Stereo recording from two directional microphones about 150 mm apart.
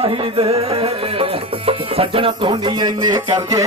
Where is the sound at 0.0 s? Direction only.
35° right (ahead or behind).